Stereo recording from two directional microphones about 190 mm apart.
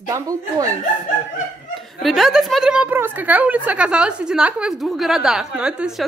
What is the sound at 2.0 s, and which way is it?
A woman's voice, centre (ahead or behind).